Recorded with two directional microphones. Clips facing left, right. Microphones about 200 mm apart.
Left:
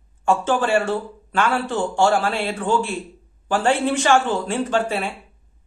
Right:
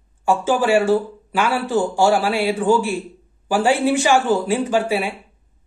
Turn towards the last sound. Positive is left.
turn(degrees=-10)  # may be behind; listen again after turning